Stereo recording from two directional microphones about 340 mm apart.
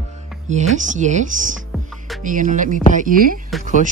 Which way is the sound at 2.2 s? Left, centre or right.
Right.